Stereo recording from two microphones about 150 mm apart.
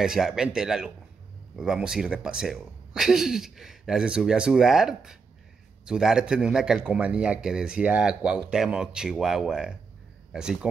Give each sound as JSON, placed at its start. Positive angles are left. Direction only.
{"t": 0.0, "sound": "a man's voice", "side_deg": -5}